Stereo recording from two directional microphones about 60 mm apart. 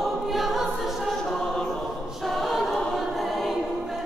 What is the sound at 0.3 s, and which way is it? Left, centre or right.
Choir, centre.